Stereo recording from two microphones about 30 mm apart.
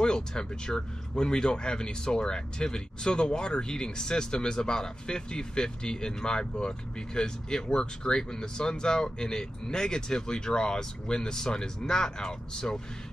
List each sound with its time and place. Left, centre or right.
0.0 s speech: left